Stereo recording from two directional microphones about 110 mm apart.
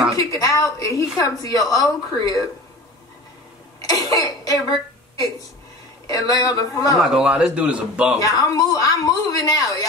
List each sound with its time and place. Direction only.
0.1 s a woman's voice: 30° left (ahead or behind)
3.8 s throat clearing: 35° left (ahead or behind)
6.0 s a woman's voice: 35° left (ahead or behind)
7.0 s speech: 5° right (ahead or behind)
8.2 s a woman's voice: 30° left (ahead or behind)